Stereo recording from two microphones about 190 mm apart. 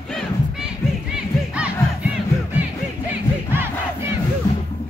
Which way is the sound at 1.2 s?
5° right (ahead or behind).